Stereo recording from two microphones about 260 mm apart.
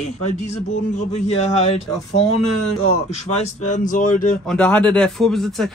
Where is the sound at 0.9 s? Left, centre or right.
Left.